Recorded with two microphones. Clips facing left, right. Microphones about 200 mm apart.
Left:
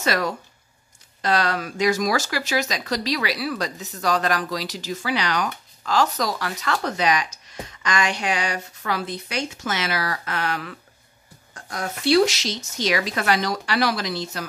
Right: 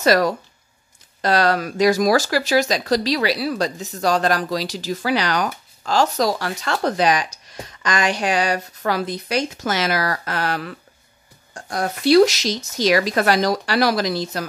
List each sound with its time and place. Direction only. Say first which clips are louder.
0.0 s speech: right 7 dB; 40° right (ahead or behind)